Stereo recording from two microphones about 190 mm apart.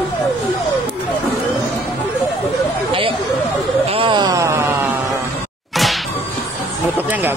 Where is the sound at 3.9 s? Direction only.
25° right (ahead or behind).